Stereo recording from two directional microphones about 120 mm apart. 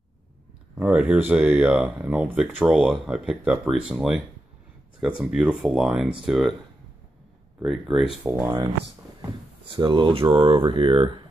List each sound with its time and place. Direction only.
0.7 s speech: 10° right (ahead or behind)
7.6 s speech: centre (ahead or behind)
8.3 s speech: 25° right (ahead or behind)
9.8 s speech: 45° right (ahead or behind)